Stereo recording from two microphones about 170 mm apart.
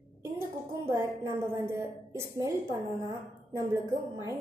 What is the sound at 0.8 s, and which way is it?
A woman's voice, 15° right (ahead or behind).